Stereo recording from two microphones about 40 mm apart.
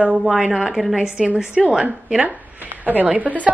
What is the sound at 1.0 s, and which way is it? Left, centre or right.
Speech, right.